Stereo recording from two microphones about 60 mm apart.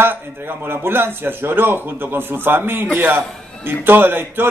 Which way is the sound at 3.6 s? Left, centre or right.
Right.